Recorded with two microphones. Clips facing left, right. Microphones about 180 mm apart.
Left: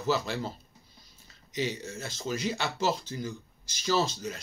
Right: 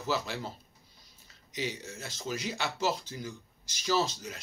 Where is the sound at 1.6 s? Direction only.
10° right (ahead or behind).